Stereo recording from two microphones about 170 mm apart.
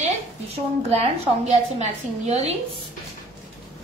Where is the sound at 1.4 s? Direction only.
40° right (ahead or behind).